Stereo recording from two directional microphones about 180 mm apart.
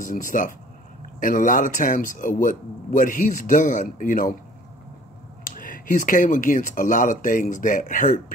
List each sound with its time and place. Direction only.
0.0 s speech: 45° left (ahead or behind)
5.4 s speech: 50° left (ahead or behind)